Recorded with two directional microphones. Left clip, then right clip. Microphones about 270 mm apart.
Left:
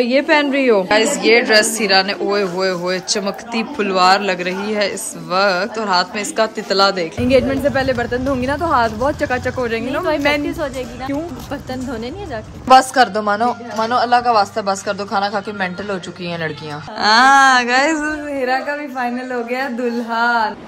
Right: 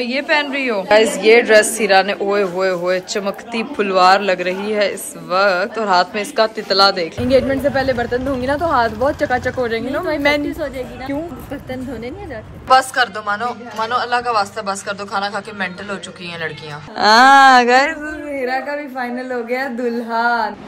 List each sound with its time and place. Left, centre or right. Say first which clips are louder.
0.8 s speech: right 2 dB; centre
7.2 s speech: even; centre
12.6 s a man's voice: left 3 dB; left
17.0 s speech: right 2 dB; centre